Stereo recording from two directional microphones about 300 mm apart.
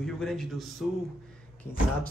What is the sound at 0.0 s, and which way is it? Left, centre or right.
A man's voice, centre.